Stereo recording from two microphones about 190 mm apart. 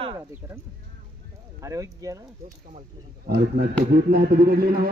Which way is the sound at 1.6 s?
15° right (ahead or behind).